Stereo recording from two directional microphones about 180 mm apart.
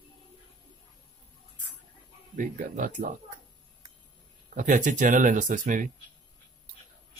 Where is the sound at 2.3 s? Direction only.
45° right (ahead or behind).